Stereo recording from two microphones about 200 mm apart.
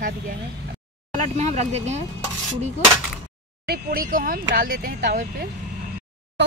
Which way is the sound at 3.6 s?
50° right (ahead or behind).